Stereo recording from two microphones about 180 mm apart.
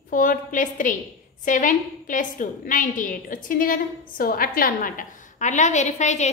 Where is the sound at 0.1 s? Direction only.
45° left (ahead or behind).